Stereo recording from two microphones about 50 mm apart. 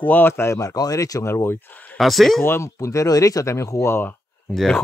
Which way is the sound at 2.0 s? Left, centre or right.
Centre.